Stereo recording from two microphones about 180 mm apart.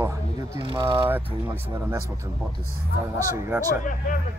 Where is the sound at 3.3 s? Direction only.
15° right (ahead or behind).